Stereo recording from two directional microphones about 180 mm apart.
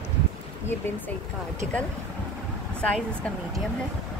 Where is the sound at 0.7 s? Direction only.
10° left (ahead or behind).